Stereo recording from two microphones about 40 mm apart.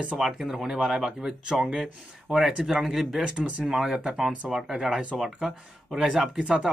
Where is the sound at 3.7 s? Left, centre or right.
Centre.